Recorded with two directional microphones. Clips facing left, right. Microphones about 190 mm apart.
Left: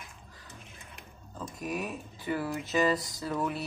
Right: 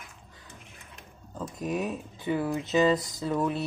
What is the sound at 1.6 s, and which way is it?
Speech, 20° right (ahead or behind).